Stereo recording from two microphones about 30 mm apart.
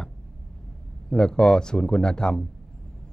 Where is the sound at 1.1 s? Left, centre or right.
Left.